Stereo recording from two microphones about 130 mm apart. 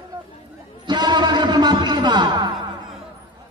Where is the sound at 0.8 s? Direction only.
35° right (ahead or behind).